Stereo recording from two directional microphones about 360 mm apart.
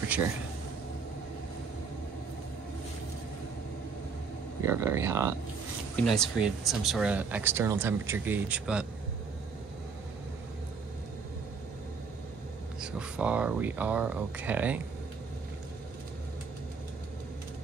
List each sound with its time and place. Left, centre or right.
4.6 s speech: centre
12.8 s speech: centre